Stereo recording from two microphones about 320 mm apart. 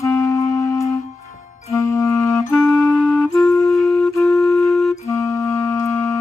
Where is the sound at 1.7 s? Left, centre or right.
Centre.